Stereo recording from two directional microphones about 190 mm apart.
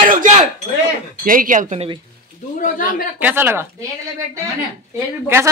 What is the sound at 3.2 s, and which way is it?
Speech, 10° right (ahead or behind).